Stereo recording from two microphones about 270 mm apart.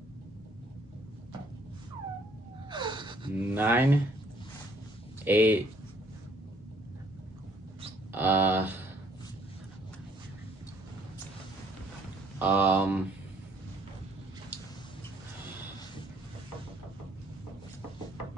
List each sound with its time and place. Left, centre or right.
2.7 s gasp: centre
5.2 s speech: centre
8.1 s speech: centre
12.4 s speech: centre